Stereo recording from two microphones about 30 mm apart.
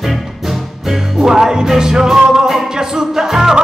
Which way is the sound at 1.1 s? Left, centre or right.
Centre.